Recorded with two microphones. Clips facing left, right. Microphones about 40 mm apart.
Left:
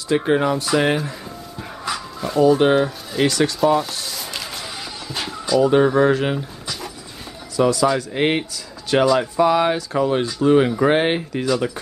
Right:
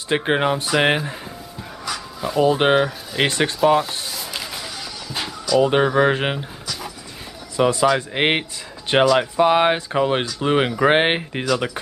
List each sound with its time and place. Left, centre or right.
0.1 s speech: right
2.4 s speech: right
4.1 s a sound: centre
5.6 s speech: right
7.5 s speech: right